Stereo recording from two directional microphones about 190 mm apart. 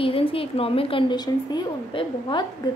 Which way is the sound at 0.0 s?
30° left (ahead or behind).